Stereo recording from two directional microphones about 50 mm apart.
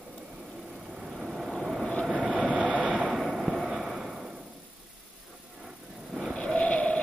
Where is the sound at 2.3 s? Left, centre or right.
Right.